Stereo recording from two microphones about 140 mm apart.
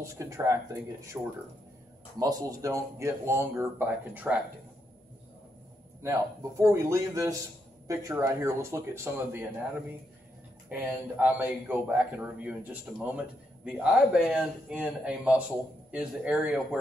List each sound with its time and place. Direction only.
0.0 s speech: 20° right (ahead or behind)
6.0 s speech: 20° right (ahead or behind)
10.7 s speech: 10° right (ahead or behind)
13.7 s speech: 5° right (ahead or behind)